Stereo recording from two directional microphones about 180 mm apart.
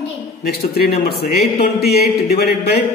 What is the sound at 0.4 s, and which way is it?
A man's voice, 60° left (ahead or behind).